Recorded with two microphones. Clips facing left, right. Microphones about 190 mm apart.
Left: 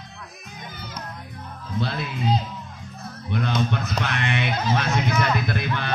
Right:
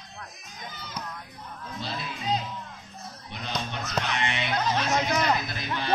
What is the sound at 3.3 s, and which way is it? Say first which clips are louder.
Speech: left 10 dB; 60° left (ahead or behind).